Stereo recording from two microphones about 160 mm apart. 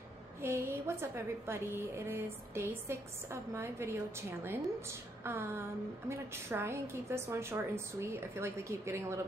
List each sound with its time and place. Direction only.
0.4 s a woman's voice: 15° right (ahead or behind)